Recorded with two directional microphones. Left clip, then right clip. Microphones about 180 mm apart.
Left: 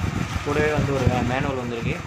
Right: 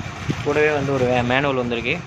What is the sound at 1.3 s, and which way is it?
Speech, 50° right (ahead or behind).